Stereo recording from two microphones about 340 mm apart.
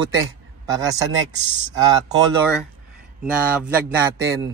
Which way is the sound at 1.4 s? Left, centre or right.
Centre.